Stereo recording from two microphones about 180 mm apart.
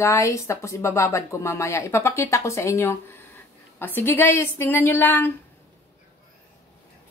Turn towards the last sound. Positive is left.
turn(degrees=10)  # may be behind; listen again after turning